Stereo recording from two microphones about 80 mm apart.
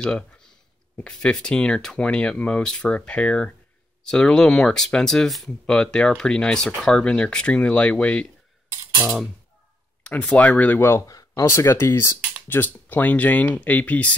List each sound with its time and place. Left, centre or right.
0.0 s speech: centre
10.0 s speech: centre
10.8 s speech: left; by 14.1 s centre